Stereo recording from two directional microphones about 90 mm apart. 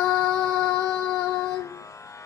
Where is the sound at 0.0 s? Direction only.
5° left (ahead or behind).